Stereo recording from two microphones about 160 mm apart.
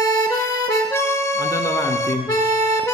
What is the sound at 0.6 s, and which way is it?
Accordion, 20° left (ahead or behind).